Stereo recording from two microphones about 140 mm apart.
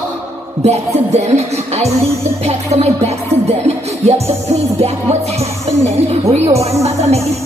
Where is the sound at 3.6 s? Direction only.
50° right (ahead or behind).